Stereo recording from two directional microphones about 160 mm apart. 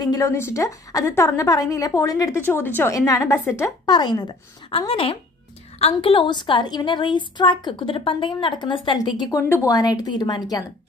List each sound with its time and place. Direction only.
0.0 s a woman's voice: 20° left (ahead or behind)